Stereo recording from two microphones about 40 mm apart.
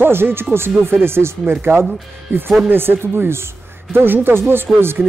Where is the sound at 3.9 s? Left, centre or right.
Right.